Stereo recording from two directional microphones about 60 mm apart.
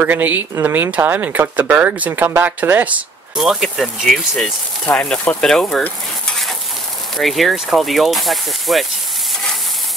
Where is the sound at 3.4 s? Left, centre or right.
Centre.